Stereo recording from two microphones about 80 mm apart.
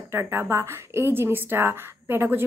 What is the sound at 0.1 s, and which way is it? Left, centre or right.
A woman's voice, right.